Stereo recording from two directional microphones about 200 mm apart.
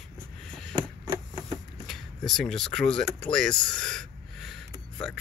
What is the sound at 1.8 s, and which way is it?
Speech, centre (ahead or behind).